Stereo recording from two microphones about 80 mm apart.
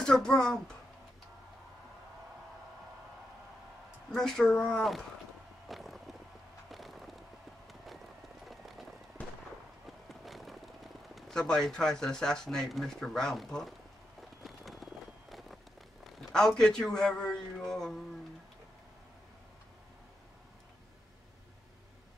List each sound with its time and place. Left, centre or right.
0.0 s a man's voice: centre
4.1 s speech: centre
5.7 s vehicle: centre
6.7 s a sound: centre
7.6 s run: centre
8.5 s rain on surface: centre
9.8 s speech: centre
14.4 s a sound: centre
16.0 s a man's voice: centre